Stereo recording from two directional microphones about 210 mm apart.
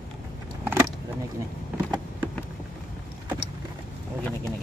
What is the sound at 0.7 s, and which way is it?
Vehicle, 10° right (ahead or behind).